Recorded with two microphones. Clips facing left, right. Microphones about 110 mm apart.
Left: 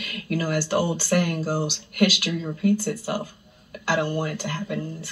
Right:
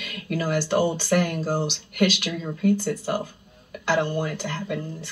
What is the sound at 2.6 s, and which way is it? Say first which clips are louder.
Speech: right 1 dB; 50° right (ahead or behind).